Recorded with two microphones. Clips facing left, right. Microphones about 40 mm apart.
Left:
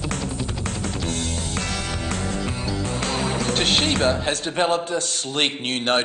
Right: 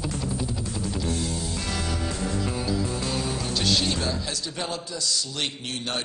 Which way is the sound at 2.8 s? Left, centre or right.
Left.